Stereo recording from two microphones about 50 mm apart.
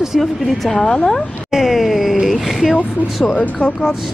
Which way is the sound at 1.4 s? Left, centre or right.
Centre.